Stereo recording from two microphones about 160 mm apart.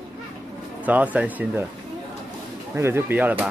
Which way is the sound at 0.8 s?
10° right (ahead or behind).